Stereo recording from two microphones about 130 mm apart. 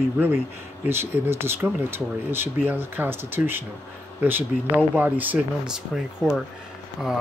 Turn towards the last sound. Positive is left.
turn(degrees=-5)  # may be behind; listen again after turning